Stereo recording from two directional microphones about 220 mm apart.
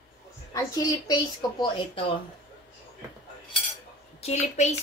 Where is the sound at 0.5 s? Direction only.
15° left (ahead or behind).